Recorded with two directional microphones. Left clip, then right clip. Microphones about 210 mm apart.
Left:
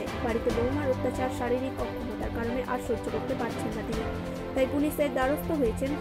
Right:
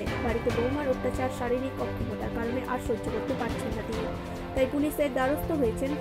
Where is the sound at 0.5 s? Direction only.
Centre (ahead or behind).